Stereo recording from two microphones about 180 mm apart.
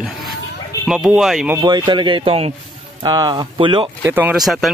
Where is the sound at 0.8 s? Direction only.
5° right (ahead or behind).